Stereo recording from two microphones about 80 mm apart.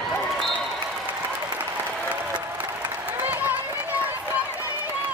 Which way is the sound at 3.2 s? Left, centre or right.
Right.